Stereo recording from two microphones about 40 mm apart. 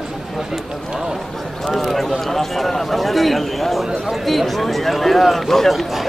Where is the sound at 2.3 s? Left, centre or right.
Centre.